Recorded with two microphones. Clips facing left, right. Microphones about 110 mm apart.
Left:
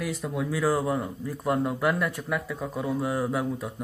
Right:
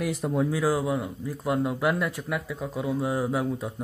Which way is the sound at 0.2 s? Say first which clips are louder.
Right 5 dB; 35° right (ahead or behind).